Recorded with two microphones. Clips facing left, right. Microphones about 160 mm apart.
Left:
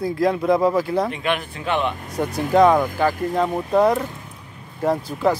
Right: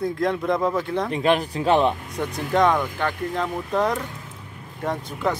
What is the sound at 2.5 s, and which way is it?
Speech, 5° left (ahead or behind).